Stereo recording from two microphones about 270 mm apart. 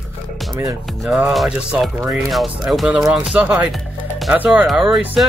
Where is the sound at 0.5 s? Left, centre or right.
Centre.